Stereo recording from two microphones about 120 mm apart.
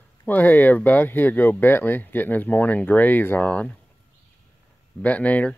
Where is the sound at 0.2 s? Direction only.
15° left (ahead or behind).